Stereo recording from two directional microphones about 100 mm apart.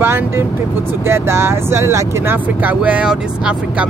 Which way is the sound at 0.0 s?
25° right (ahead or behind).